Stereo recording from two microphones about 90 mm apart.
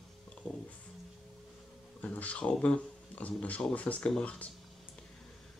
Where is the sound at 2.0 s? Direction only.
15° left (ahead or behind).